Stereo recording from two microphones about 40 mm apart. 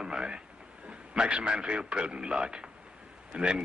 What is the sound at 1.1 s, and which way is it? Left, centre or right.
A man's voice, right.